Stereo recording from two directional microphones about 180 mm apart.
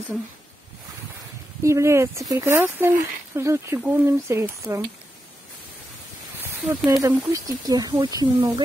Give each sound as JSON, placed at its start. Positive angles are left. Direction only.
{"t": 1.6, "sound": "speech", "side_deg": -15}
{"t": 6.4, "sound": "speech", "side_deg": -5}